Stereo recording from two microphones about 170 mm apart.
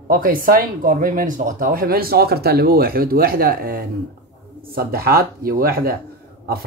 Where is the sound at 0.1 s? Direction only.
55° right (ahead or behind).